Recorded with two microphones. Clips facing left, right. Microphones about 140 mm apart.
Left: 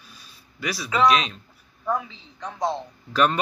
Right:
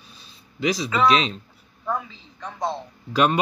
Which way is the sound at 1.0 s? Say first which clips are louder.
Even; 25° right (ahead or behind).